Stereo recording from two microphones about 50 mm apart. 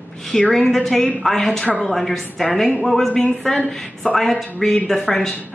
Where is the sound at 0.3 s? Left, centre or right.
Centre.